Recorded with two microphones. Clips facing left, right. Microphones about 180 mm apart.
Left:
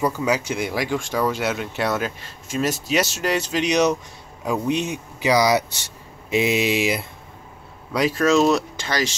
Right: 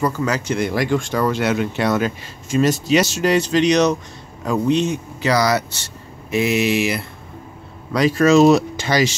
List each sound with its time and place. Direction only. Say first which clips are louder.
0.0 s speech: right 1 dB; 10° left (ahead or behind)
7.9 s speech: right 4 dB; 5° left (ahead or behind)